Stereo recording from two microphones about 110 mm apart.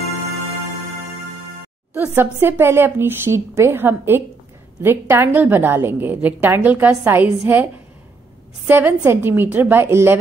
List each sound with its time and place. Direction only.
2.0 s a woman's voice: 20° right (ahead or behind)
8.6 s a woman's voice: 20° right (ahead or behind)